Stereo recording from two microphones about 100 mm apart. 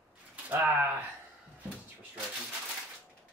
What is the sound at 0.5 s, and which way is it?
Speech, 20° right (ahead or behind).